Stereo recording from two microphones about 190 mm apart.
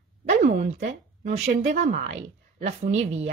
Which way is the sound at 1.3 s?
40° right (ahead or behind).